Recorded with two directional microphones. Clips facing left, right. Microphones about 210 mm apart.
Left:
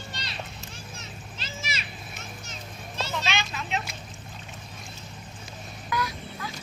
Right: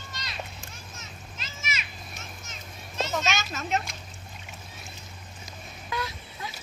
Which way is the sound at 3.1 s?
45° right (ahead or behind).